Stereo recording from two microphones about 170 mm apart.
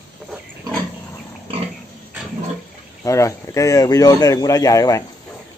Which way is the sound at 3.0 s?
15° left (ahead or behind).